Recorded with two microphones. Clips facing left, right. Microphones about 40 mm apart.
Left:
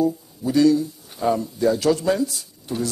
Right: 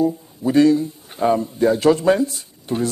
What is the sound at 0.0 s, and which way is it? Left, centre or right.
A man's voice, right.